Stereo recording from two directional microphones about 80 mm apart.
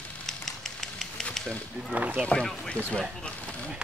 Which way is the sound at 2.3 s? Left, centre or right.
Centre.